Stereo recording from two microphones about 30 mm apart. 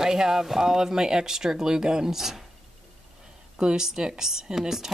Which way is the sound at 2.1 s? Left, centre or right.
Centre.